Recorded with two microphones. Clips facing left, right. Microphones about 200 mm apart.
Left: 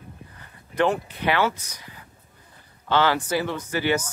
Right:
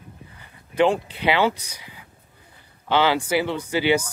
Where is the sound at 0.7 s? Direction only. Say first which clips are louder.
Right 3 dB; 15° right (ahead or behind).